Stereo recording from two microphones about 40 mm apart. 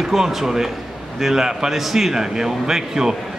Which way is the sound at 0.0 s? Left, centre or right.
Centre.